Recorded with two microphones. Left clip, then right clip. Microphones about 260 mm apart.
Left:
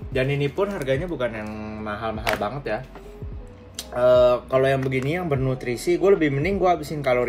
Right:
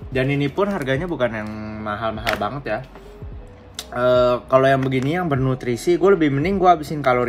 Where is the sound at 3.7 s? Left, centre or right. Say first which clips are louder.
Even; centre.